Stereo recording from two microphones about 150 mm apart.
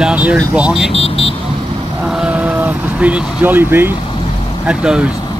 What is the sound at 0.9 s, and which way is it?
Vehicle, 40° left (ahead or behind).